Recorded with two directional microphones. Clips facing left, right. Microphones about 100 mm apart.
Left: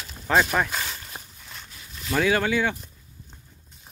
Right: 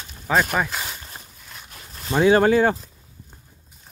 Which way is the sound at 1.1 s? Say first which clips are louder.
Left 1 dB; 15° left (ahead or behind).